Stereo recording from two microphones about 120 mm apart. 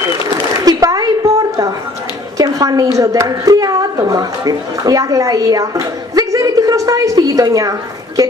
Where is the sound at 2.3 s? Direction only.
30° right (ahead or behind).